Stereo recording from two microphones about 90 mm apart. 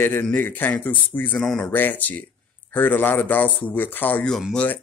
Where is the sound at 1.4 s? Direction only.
5° left (ahead or behind).